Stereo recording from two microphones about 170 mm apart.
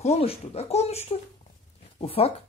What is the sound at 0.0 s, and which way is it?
A woman's voice, 35° left (ahead or behind).